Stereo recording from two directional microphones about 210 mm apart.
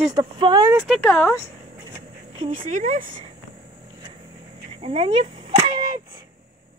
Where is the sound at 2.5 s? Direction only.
40° right (ahead or behind).